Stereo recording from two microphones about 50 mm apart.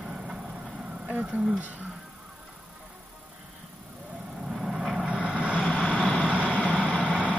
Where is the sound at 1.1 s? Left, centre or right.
Right.